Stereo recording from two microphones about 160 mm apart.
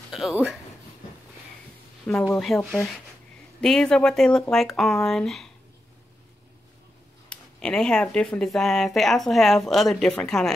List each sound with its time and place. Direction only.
0.1 s speech: centre (ahead or behind)
2.0 s speech: 5° left (ahead or behind)
7.2 s speech: 5° left (ahead or behind)